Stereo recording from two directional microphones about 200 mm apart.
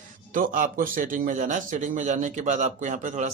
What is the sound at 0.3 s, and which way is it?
A man's voice, 45° right (ahead or behind).